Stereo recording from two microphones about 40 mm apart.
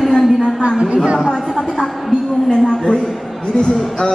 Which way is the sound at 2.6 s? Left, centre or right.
Centre.